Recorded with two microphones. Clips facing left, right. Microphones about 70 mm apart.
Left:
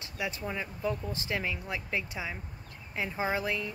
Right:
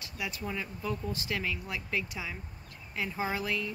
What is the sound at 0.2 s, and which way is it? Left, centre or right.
Speech, left.